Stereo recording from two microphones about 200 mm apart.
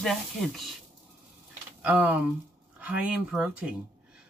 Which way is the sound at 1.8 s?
10° right (ahead or behind).